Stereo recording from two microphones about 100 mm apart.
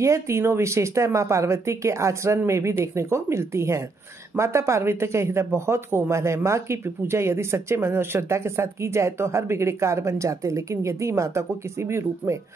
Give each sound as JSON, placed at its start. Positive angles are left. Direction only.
{"t": 0.0, "sound": "speech", "side_deg": -30}